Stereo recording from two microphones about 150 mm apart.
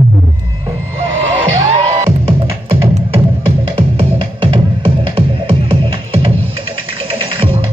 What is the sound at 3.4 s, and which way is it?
Music, 35° right (ahead or behind).